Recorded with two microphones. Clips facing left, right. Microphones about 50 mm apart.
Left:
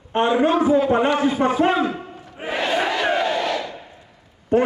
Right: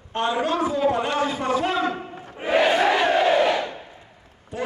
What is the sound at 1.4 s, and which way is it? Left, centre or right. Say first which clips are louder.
Speech: left 5 dB; left.